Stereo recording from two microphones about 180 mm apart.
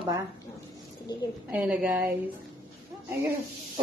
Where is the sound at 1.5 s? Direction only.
5° right (ahead or behind).